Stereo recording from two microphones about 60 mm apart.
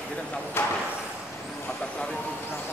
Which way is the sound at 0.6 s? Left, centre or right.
Left.